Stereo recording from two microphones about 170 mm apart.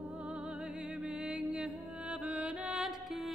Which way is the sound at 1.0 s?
5° right (ahead or behind).